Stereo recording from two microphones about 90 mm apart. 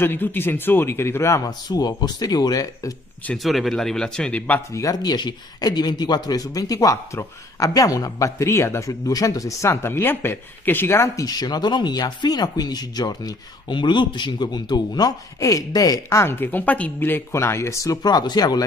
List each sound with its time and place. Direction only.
0.0 s a man's voice: 25° left (ahead or behind)
1.7 s speech: 50° left (ahead or behind)
3.4 s speech: centre (ahead or behind)
4.7 s speech: 45° left (ahead or behind)
11.2 s speech: 50° left (ahead or behind)
18.0 s speech: 50° left (ahead or behind)